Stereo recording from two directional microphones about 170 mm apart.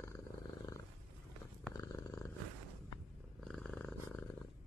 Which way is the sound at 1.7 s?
20° left (ahead or behind).